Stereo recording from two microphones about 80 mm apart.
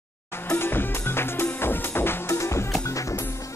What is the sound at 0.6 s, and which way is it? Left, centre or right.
Music, left.